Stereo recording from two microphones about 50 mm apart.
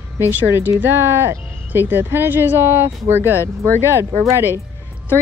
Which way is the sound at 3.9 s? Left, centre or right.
Right.